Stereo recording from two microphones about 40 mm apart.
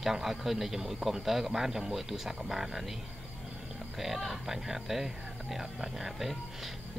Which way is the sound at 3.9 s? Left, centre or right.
Centre.